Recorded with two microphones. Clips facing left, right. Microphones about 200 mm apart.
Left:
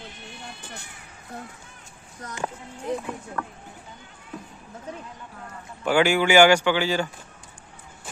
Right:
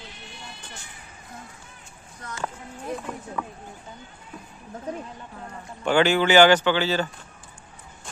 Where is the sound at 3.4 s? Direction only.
10° right (ahead or behind).